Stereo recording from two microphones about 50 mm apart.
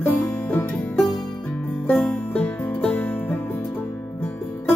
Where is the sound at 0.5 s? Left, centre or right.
Left.